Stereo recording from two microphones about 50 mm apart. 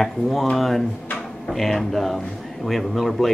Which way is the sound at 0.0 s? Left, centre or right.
Centre.